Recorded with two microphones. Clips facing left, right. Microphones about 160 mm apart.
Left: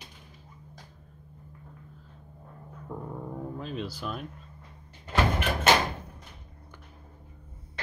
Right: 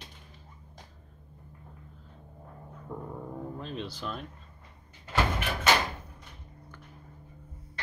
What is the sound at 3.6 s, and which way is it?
Speech, 5° left (ahead or behind).